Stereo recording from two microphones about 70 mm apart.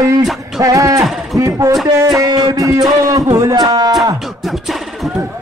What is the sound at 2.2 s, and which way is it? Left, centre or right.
Speech, right.